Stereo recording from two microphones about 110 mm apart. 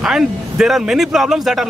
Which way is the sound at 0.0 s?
5° right (ahead or behind).